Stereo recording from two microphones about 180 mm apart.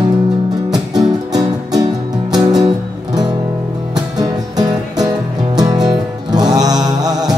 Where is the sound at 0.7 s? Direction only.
20° right (ahead or behind).